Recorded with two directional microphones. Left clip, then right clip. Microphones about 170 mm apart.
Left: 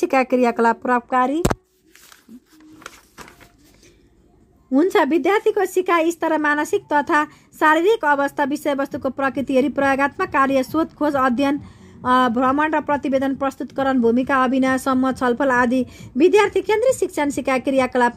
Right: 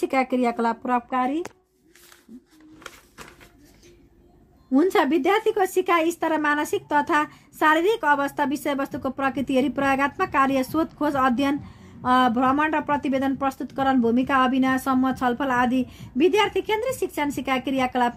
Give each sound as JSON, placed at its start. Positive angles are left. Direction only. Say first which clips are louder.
{"t": 0.0, "sound": "speech", "louder": "left 5 dB", "side_deg": 30}
{"t": 2.8, "sound": "printer", "louder": "left 3 dB", "side_deg": 70}
{"t": 4.7, "sound": "a woman's voice", "louder": "left 3 dB", "side_deg": 30}